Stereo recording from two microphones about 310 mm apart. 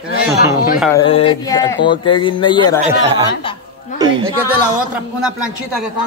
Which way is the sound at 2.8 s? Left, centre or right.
Centre.